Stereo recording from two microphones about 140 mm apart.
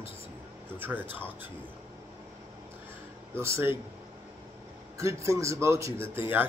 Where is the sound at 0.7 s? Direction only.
15° right (ahead or behind).